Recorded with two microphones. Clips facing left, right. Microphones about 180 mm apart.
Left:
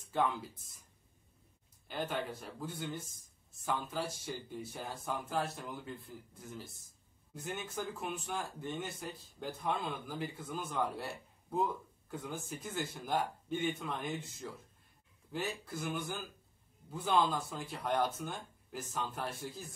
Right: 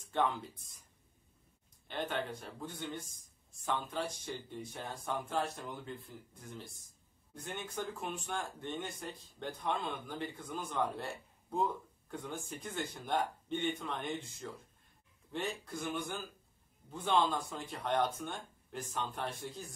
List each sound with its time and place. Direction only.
1.9 s speech: 5° left (ahead or behind)
12.1 s speech: 5° left (ahead or behind)